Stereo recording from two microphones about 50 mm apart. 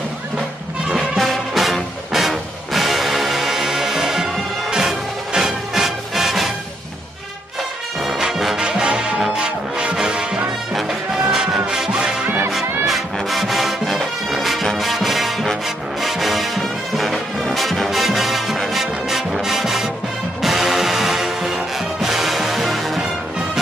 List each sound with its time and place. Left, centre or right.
0.9 s music: centre
8.0 s music: centre
8.5 s music: centre
12.8 s music: centre